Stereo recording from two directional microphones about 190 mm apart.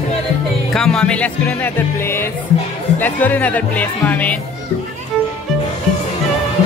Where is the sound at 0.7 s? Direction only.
5° left (ahead or behind).